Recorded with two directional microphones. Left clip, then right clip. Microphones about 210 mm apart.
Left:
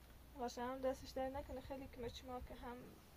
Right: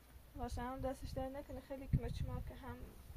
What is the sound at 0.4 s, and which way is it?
Speech, 30° left (ahead or behind).